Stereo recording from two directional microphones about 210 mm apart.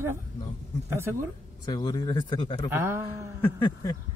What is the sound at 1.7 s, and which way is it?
Speech, 20° left (ahead or behind).